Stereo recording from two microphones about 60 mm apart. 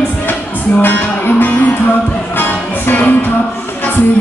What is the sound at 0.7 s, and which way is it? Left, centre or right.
Music, left.